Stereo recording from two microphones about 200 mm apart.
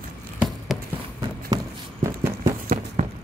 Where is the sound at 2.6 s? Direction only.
40° right (ahead or behind).